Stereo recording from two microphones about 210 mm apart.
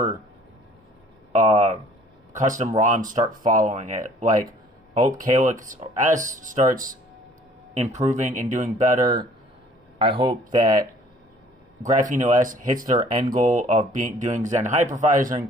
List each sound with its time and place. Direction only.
1.3 s a sound: 35° right (ahead or behind)
2.3 s speech: 35° right (ahead or behind)
8.9 s a man's voice: 15° right (ahead or behind)
11.9 s speech: 35° right (ahead or behind)